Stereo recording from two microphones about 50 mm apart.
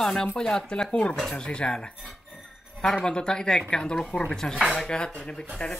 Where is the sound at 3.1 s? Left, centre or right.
Centre.